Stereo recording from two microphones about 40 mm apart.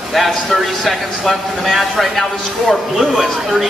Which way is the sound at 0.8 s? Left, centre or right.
Centre.